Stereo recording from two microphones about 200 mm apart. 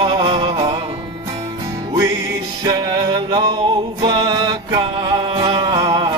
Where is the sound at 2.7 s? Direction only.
20° right (ahead or behind).